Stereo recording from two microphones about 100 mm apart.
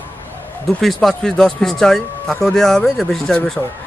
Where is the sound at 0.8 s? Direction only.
Centre (ahead or behind).